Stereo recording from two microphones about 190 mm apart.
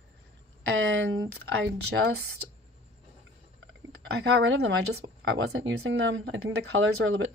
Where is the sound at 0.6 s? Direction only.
90° right.